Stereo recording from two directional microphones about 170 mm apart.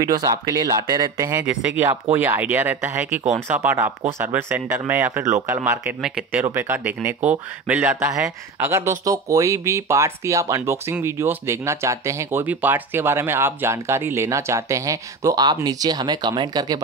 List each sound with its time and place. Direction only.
0.0 s speech: 20° right (ahead or behind)
1.4 s speech: 5° right (ahead or behind); by 16.8 s 25° right (ahead or behind)